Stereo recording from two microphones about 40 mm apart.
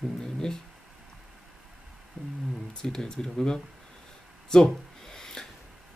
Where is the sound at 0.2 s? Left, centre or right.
Centre.